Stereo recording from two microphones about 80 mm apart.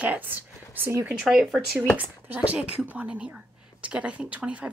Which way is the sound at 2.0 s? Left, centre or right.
Right.